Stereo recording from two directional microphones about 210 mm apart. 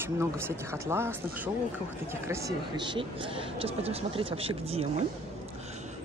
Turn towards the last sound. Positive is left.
turn(degrees=-30)  # may be behind; listen again after turning